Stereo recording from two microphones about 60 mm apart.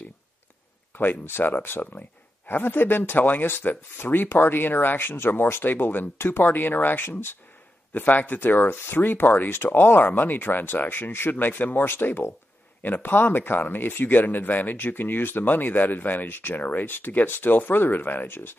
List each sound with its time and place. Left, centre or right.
0.9 s speech: left